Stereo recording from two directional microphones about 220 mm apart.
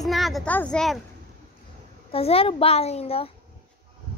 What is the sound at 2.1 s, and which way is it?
A child's voice, 25° left (ahead or behind).